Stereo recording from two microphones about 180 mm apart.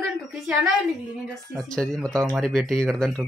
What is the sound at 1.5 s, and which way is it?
Speech, 5° left (ahead or behind).